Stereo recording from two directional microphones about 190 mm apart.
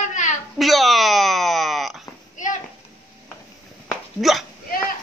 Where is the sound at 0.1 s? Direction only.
40° left (ahead or behind).